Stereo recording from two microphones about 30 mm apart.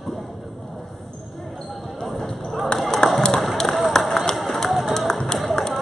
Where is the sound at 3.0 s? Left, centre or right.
Left.